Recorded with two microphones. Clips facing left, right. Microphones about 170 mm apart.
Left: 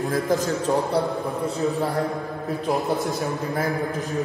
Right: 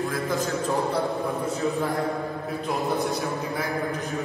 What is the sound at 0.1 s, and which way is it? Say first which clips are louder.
Speech: left 4 dB; 40° left (ahead or behind).